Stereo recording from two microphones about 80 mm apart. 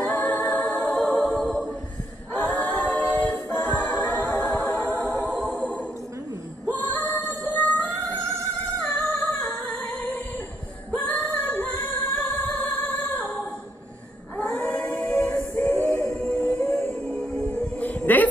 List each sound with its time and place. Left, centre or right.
0.2 s a capella: centre
0.9 s music: centre
2.3 s a capella: left
5.6 s music: centre
14.3 s a sound: left
14.9 s music: left